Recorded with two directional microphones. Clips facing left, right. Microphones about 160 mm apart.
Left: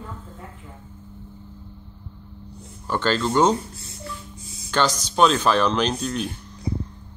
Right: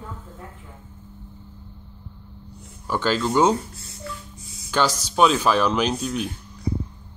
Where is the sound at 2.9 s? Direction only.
5° right (ahead or behind).